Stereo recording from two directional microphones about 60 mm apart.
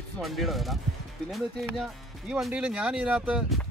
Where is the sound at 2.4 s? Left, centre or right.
Centre.